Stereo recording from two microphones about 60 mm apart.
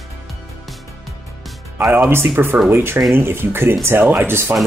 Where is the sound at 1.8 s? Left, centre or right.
Right.